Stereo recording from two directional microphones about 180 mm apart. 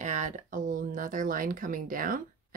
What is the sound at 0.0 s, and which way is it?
Speech, 45° right (ahead or behind).